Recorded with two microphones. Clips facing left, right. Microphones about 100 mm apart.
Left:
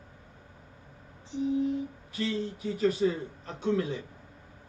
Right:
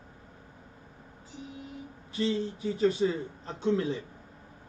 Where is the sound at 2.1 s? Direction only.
25° right (ahead or behind).